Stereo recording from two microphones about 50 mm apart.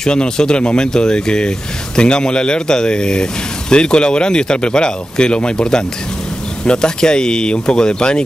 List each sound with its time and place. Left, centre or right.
0.0 s speech: centre